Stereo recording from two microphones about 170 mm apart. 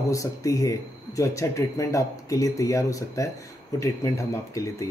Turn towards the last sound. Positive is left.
turn(degrees=20)  # may be behind; listen again after turning